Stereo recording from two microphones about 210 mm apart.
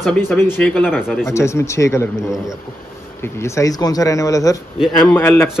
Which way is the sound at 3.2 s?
15° left (ahead or behind).